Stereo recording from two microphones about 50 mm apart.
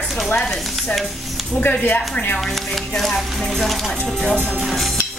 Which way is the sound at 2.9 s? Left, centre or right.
Centre.